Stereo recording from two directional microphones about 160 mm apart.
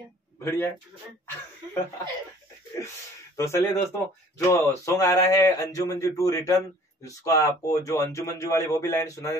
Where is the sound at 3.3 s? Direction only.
20° left (ahead or behind).